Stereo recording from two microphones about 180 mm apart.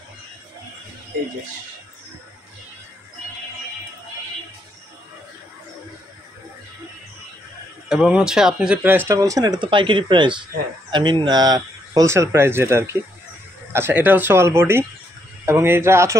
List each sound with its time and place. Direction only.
7.9 s speech: 5° right (ahead or behind)